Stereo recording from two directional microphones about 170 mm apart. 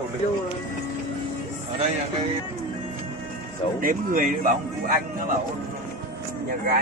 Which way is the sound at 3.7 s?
55° right (ahead or behind).